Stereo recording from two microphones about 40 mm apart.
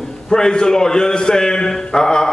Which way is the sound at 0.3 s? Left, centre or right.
Centre.